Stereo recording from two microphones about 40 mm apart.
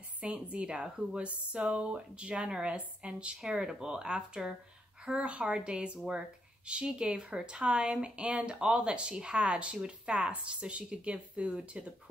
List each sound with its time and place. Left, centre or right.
0.2 s a woman's voice: right
3.5 s a woman's voice: centre